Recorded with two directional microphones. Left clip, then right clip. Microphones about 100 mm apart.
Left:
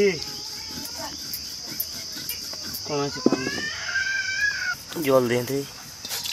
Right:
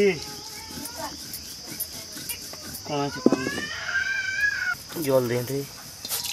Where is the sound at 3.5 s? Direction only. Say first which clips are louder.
Left 1 dB; 50° right (ahead or behind).